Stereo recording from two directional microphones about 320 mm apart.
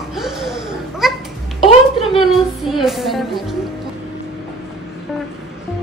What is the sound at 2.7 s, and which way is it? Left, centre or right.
Music, centre.